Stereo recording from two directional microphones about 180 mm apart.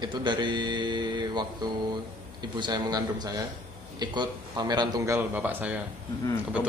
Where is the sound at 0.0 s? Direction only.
25° right (ahead or behind).